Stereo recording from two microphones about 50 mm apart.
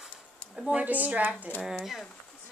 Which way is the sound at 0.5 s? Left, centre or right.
Centre.